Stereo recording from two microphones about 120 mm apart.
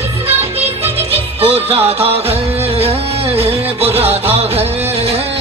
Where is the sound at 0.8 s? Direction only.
55° right (ahead or behind).